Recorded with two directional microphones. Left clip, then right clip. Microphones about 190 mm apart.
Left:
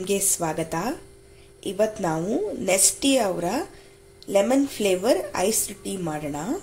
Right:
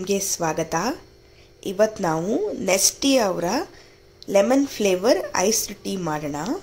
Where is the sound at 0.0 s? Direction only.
5° right (ahead or behind).